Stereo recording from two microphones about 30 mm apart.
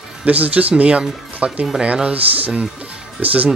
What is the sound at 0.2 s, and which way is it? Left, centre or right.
Speech, right.